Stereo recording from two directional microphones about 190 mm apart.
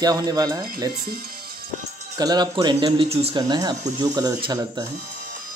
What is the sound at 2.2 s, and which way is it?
Speech, 20° right (ahead or behind).